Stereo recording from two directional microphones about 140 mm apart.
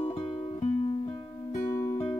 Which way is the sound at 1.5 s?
20° left (ahead or behind).